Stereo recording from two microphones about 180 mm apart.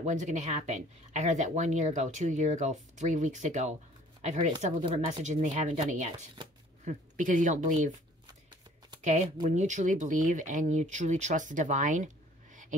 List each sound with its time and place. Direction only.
0.0 s speech: 40° right (ahead or behind)
9.0 s speech: 40° right (ahead or behind)